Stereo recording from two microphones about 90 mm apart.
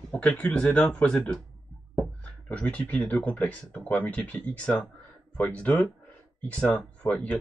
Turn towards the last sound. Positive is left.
turn(degrees=10)  # may be behind; listen again after turning